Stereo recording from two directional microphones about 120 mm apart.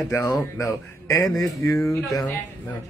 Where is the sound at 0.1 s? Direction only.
25° left (ahead or behind).